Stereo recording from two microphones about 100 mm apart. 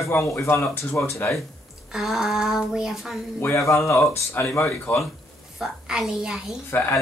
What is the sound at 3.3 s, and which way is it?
Speech, 25° left (ahead or behind).